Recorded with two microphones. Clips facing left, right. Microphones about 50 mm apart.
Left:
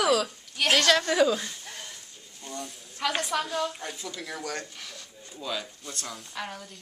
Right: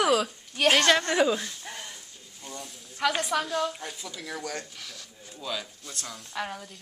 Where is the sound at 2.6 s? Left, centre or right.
Centre.